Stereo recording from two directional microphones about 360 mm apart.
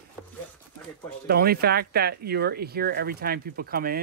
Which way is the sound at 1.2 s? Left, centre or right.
Right.